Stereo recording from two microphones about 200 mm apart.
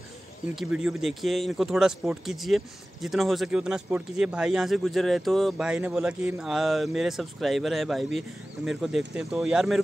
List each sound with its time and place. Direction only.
0.6 s speech: 5° right (ahead or behind)